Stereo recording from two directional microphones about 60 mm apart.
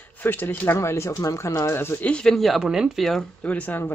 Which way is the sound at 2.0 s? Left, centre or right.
Centre.